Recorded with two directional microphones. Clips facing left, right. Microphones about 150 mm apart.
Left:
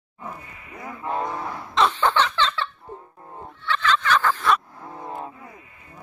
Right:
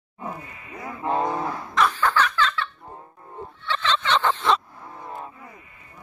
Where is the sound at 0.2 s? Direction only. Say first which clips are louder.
Right 3 dB; 25° right (ahead or behind).